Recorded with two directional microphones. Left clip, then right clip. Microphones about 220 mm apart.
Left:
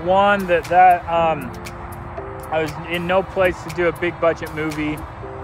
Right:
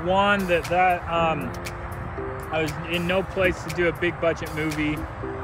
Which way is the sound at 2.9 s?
20° left (ahead or behind).